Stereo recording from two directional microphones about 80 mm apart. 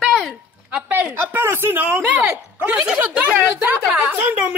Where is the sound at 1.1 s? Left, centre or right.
Right.